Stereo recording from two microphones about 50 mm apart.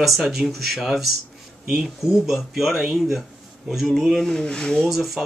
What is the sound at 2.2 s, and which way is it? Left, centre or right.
Speech, centre.